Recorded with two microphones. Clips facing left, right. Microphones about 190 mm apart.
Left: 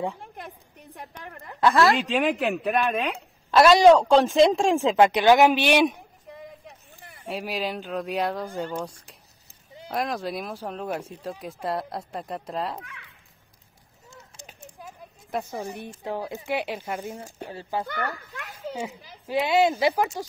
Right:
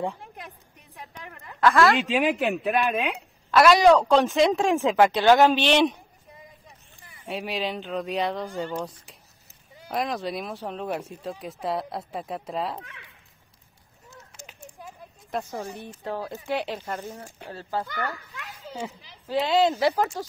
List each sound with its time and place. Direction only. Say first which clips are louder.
1.6 s a woman's voice: even; 20° left (ahead or behind)
2.0 s speech: even; centre (ahead or behind)
3.5 s a woman's voice: left 2 dB; 25° left (ahead or behind); by 5.9 s 10° left (ahead or behind)
7.2 s speech: even; centre (ahead or behind)
9.8 s speech: even; centre (ahead or behind)
15.3 s speech: left 1 dB; 10° left (ahead or behind)
18.2 s a sound: left 5 dB; 50° left (ahead or behind)
19.2 s speech: even; 10° left (ahead or behind)